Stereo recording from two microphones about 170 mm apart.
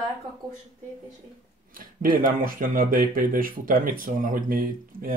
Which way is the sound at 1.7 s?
55° right (ahead or behind).